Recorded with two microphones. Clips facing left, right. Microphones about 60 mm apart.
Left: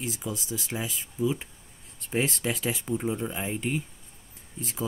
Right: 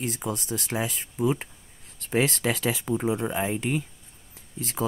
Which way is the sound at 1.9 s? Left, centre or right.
Right.